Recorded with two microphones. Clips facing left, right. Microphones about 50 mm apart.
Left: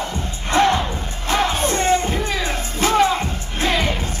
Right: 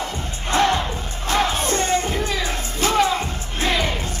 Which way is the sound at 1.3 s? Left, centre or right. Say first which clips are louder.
Left 1 dB; left.